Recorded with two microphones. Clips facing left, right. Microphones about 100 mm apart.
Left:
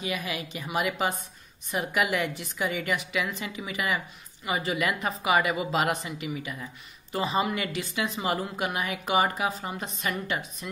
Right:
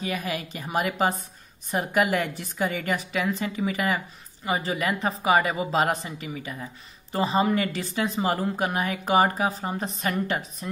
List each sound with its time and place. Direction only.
0.0 s speech: 40° right (ahead or behind)